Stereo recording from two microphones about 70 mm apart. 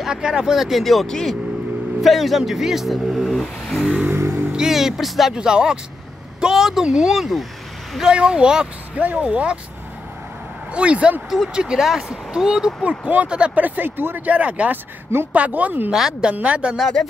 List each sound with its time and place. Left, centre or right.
0.0 s speech: centre
4.5 s speech: centre
10.7 s speech: centre
11.2 s speech: centre; by 15.9 s right
15.9 s speech: centre
16.7 s speech: centre